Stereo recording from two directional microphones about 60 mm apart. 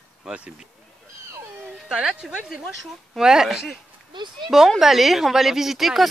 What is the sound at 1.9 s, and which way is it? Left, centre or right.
Speech, centre.